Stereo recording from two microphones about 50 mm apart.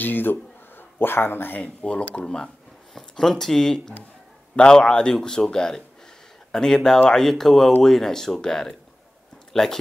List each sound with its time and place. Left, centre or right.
0.0 s speech: left
1.6 s speech: left
2.9 s speech: centre